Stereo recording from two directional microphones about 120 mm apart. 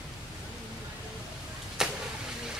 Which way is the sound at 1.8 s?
5° right (ahead or behind).